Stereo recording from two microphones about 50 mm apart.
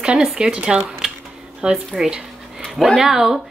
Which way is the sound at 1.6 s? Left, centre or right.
Centre.